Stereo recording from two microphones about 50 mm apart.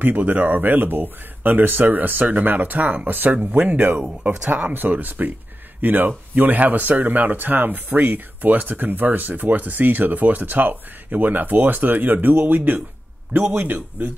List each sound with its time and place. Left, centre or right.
0.0 s speech: right